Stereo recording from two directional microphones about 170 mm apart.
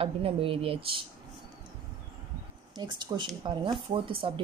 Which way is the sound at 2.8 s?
25° right (ahead or behind).